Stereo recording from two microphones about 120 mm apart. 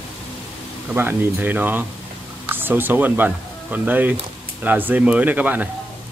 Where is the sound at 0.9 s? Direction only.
20° right (ahead or behind).